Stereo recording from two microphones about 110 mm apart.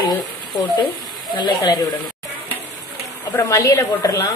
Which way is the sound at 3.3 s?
30° left (ahead or behind).